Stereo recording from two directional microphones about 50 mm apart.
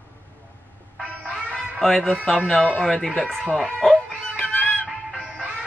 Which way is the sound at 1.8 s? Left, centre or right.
Centre.